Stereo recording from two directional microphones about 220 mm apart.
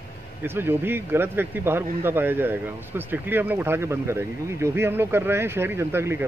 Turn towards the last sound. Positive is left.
turn(degrees=-10)  # may be behind; listen again after turning